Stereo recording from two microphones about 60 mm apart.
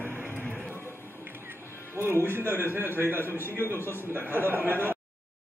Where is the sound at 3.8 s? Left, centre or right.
Left.